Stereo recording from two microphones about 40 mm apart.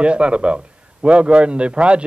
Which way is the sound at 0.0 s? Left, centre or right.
Right.